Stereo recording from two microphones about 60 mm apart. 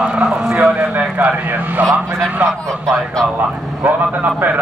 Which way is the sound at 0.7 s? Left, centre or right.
Right.